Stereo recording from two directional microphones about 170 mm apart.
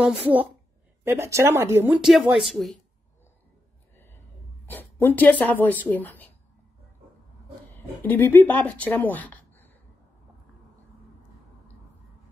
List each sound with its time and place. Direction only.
0.0 s speech: 5° right (ahead or behind)
2.0 s speech: centre (ahead or behind)
3.9 s a sound: 10° left (ahead or behind)
4.6 s speech: 10° left (ahead or behind)
7.7 s speech: 10° left (ahead or behind)